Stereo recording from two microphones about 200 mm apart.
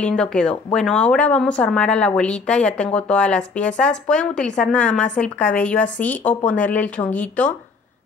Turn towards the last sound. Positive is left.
turn(degrees=5)  # may be behind; listen again after turning